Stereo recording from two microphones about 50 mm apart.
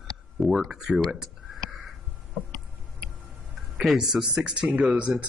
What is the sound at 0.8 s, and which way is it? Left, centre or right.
Speech, centre.